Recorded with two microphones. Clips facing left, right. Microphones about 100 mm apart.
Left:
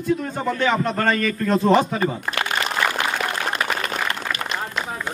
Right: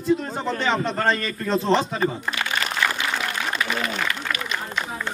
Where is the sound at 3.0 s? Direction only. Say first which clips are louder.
Left 3 dB; 60° left (ahead or behind).